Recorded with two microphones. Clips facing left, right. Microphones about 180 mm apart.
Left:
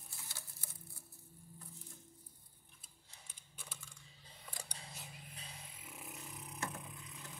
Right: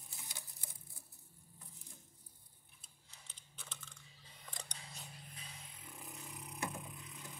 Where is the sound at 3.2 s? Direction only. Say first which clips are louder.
Even; 10° left (ahead or behind).